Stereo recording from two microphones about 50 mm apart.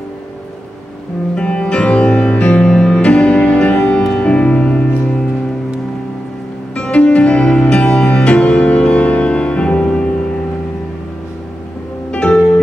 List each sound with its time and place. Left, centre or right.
1.3 s music: left
6.7 s music: left
12.1 s music: left